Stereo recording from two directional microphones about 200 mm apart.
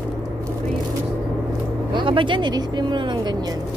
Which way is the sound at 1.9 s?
25° right (ahead or behind).